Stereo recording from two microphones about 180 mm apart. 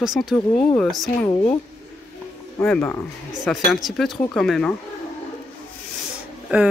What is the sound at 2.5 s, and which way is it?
Speech, 10° left (ahead or behind).